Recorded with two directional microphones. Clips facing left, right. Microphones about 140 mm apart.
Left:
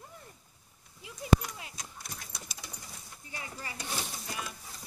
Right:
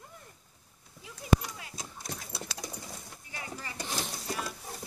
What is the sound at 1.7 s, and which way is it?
Horse, 25° right (ahead or behind).